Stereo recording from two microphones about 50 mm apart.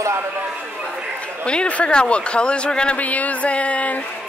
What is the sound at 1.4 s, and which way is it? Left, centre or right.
A man's voice, left.